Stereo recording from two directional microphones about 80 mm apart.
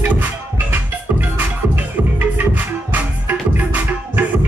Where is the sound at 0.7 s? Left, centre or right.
Right.